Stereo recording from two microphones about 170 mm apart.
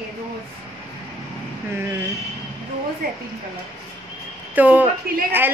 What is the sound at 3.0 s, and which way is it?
Speech, 55° right (ahead or behind).